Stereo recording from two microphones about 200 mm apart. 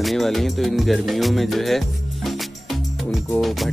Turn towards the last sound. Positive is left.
turn(degrees=0)  # may be behind; listen again after turning